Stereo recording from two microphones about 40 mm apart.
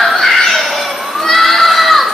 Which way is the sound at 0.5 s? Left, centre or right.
Centre.